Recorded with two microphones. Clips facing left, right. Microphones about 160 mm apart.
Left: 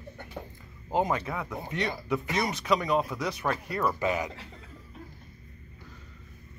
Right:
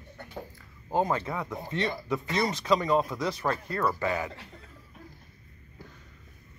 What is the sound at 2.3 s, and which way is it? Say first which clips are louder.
Speech: right 2 dB; 15° left (ahead or behind).